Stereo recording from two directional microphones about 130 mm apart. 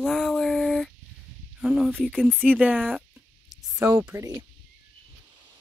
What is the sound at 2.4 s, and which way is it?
Speech, 10° right (ahead or behind).